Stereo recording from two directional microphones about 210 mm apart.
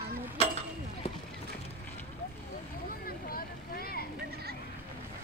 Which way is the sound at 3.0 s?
45° left (ahead or behind).